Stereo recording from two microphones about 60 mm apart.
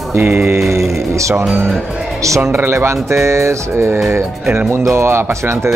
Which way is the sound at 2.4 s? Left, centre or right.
Right.